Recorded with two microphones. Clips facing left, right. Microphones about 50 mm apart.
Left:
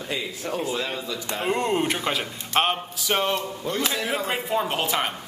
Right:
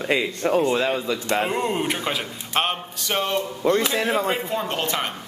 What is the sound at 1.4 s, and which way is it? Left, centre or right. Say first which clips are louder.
Speech: even; centre.